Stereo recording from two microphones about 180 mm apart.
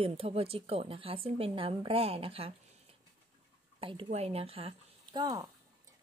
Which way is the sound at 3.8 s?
30° right (ahead or behind).